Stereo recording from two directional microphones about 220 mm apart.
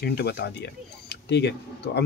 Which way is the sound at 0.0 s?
45° left (ahead or behind).